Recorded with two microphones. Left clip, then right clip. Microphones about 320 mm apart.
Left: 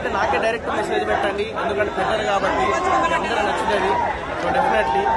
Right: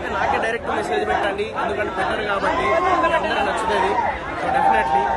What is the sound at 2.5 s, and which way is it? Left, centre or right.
Speech, right.